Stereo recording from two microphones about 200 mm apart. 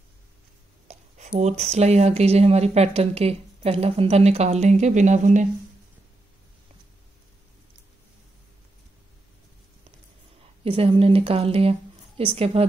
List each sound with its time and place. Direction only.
0.8 s speech: 35° right (ahead or behind)
10.6 s speech: 25° right (ahead or behind)